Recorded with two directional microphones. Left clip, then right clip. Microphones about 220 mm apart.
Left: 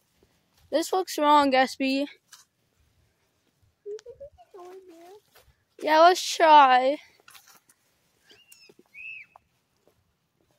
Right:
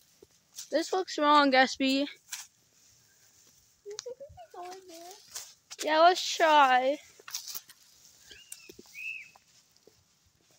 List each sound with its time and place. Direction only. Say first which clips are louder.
0.7 s speech: left 4 dB; 25° left (ahead or behind)
5.9 s speech: left 5 dB; 40° left (ahead or behind)
9.3 s livestock: left 5 dB; 10° right (ahead or behind)